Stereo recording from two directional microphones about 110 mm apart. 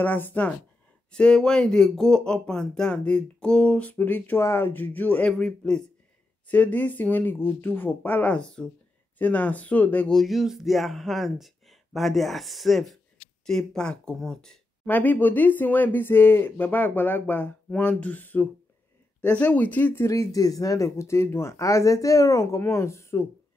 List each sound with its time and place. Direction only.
0.0 s speech: 20° left (ahead or behind)
10.1 s speech: centre (ahead or behind)
14.9 s speech: 15° left (ahead or behind)
20.1 s speech: 30° left (ahead or behind)